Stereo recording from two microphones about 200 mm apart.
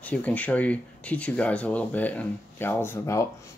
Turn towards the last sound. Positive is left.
turn(degrees=10)  # may be behind; listen again after turning